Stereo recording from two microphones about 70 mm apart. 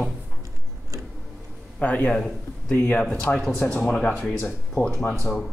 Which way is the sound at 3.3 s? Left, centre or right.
Centre.